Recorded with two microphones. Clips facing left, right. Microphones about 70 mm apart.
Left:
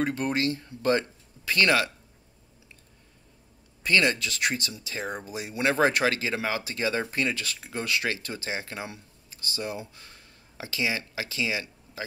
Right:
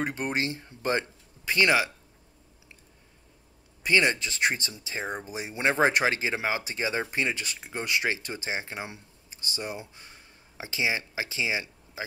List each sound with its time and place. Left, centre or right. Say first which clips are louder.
0.0 s speech: left 3 dB; right
3.8 s speech: even; centre